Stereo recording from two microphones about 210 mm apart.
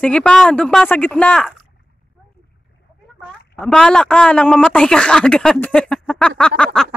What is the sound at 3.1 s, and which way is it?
Speech, 5° left (ahead or behind).